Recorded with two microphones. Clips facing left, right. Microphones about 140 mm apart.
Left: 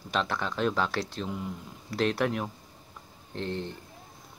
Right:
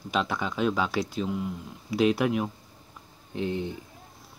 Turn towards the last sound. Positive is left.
turn(degrees=-10)  # may be behind; listen again after turning